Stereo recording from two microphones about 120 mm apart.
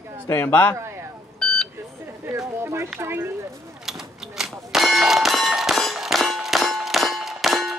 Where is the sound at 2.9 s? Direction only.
20° right (ahead or behind).